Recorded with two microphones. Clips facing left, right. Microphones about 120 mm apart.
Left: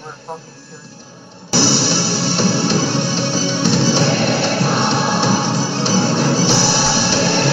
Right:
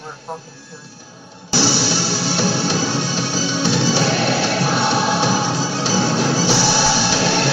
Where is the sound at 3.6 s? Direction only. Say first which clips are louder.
Left 2 dB; 45° left (ahead or behind).